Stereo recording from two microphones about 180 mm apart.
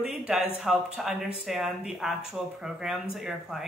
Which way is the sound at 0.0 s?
5° right (ahead or behind).